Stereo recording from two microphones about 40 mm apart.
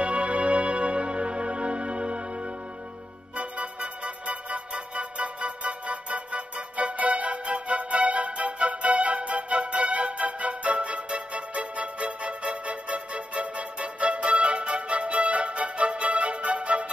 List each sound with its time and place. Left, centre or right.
0.0 s music: right
3.3 s music: right